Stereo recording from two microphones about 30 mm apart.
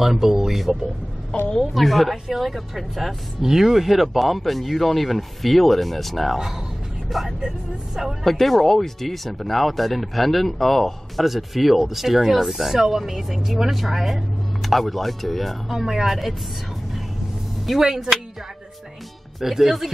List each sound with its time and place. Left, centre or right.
0.0 s speech: centre
0.5 s speech: centre
7.2 s speech: centre
8.2 s speech: centre
11.2 s speech: centre
15.7 s speech: centre
17.7 s speech: centre
19.4 s speech: centre